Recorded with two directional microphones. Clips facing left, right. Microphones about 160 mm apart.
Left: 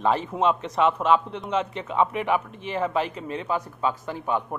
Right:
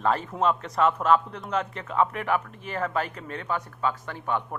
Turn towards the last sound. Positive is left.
turn(degrees=15)  # may be behind; listen again after turning